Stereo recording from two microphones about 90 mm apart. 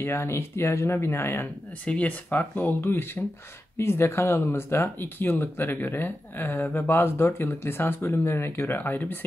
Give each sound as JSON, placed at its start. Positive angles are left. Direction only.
{"t": 0.0, "sound": "speech", "side_deg": 30}
{"t": 1.9, "sound": "speech", "side_deg": 15}